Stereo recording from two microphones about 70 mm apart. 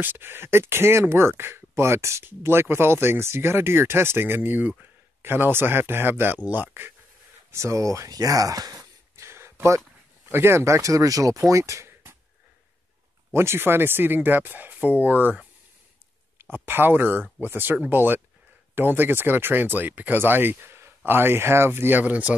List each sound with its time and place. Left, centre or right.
0.0 s speech: right
7.5 s a sound: right
10.3 s speech: right
13.3 s speech: right
16.3 s speech: right